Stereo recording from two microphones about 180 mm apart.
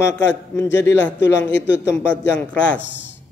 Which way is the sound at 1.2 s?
80° left.